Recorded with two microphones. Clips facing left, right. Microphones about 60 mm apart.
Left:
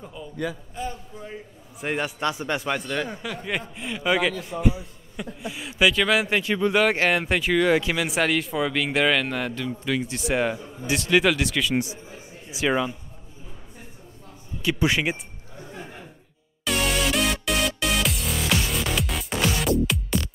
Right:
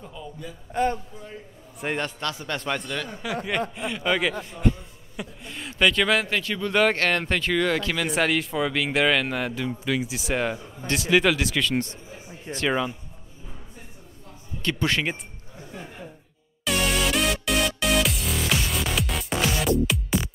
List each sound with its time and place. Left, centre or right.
0.0 s a man's voice: centre
0.8 s a man's voice: right
1.8 s speech: centre
2.0 s a man's voice: centre
2.6 s speech: centre
6.2 s speech: centre
6.7 s speech: centre
8.0 s speech: centre
14.6 s speech: centre
16.6 s music: centre